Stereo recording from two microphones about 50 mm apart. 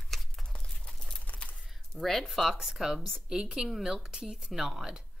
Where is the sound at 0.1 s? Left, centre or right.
Centre.